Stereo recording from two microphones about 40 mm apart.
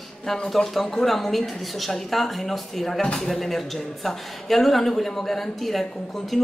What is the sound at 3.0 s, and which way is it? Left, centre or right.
Speech, centre.